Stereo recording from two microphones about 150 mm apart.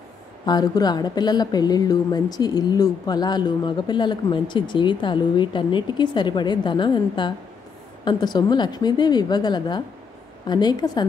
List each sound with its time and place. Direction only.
0.5 s a woman's voice: 25° left (ahead or behind)